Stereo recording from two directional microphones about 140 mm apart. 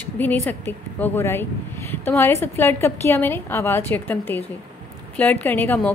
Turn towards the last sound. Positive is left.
turn(degrees=10)  # may be behind; listen again after turning